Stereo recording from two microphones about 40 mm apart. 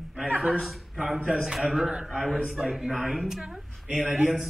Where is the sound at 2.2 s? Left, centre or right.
Centre.